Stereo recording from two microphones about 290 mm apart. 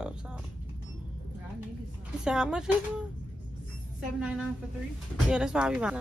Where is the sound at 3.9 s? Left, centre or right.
Centre.